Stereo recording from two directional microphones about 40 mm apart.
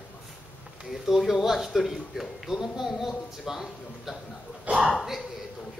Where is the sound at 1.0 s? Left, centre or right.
Centre.